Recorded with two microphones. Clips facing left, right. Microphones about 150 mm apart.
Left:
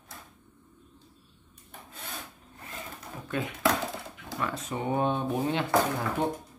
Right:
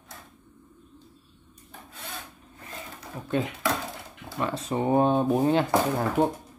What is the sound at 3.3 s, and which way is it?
Speech, 30° right (ahead or behind).